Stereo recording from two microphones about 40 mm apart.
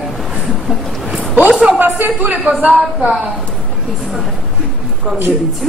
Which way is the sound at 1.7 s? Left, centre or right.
Right.